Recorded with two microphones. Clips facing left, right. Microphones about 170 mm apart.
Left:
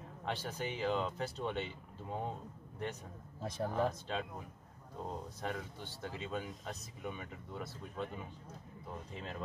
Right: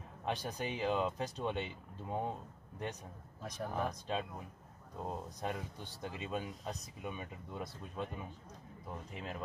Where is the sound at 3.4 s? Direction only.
25° left (ahead or behind).